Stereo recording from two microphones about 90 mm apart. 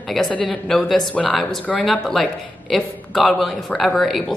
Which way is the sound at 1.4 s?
Centre (ahead or behind).